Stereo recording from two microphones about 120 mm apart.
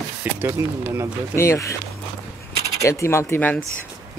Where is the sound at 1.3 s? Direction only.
20° left (ahead or behind).